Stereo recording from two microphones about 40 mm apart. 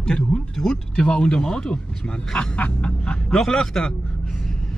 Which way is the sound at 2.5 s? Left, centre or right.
Left.